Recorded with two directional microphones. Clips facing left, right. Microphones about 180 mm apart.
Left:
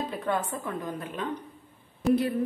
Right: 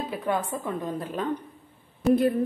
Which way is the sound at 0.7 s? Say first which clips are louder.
Right 3 dB; 25° right (ahead or behind).